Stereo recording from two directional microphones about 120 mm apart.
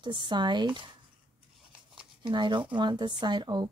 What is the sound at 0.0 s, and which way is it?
Speech, 40° right (ahead or behind).